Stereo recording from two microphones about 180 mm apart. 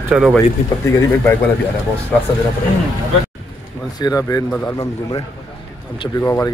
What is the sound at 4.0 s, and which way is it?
Speech, 20° left (ahead or behind).